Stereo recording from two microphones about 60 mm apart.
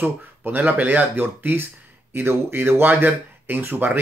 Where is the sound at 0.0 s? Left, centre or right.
Right.